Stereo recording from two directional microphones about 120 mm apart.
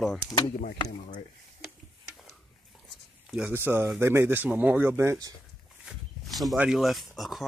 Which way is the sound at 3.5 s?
20° right (ahead or behind).